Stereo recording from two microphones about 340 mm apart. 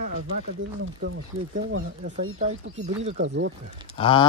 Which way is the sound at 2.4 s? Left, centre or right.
Right.